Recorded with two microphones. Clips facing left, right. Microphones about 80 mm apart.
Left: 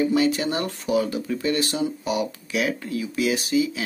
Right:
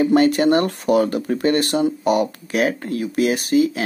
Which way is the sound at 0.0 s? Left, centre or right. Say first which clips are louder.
Right 6 dB; right.